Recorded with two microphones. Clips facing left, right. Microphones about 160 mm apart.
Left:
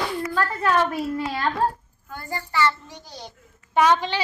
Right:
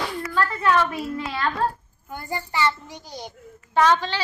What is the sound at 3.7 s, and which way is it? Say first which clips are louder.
Speech: even; 15° left (ahead or behind).